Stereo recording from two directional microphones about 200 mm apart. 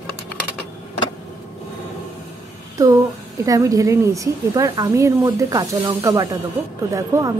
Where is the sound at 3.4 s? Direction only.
15° right (ahead or behind).